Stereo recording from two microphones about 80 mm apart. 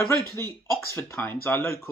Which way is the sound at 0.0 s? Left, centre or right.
Left.